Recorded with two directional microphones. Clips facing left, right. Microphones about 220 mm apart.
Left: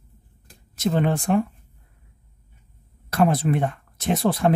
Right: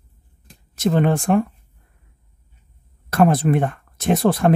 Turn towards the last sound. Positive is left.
turn(degrees=-50)  # may be behind; listen again after turning